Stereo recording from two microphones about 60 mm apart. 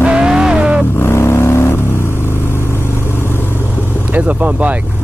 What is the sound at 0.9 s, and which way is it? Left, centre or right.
Vehicle, left.